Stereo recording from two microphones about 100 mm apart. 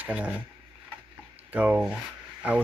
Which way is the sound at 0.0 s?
15° right (ahead or behind).